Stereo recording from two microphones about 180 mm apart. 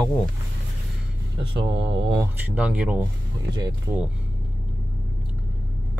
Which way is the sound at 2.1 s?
10° right (ahead or behind).